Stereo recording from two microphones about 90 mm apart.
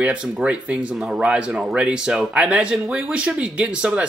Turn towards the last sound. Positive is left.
turn(degrees=-10)  # may be behind; listen again after turning